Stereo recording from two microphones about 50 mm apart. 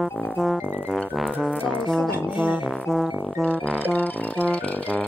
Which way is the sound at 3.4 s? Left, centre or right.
Left.